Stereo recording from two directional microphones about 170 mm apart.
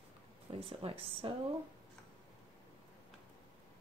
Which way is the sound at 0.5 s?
35° right (ahead or behind).